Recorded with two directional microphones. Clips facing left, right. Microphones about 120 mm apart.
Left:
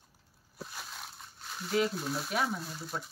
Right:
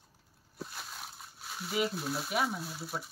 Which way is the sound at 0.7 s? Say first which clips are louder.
Even; centre (ahead or behind).